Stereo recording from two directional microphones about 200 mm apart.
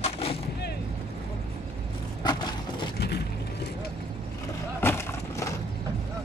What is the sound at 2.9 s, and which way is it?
Vehicle, 55° left (ahead or behind).